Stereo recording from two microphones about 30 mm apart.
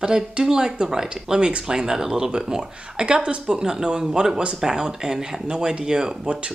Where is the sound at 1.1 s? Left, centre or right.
Right.